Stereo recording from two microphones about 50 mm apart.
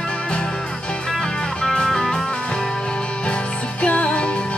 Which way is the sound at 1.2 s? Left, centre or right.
Centre.